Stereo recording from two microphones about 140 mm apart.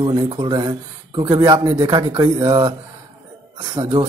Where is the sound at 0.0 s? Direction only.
35° right (ahead or behind).